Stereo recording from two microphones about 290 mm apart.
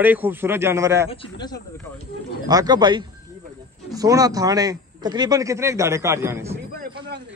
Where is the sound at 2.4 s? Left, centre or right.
Centre.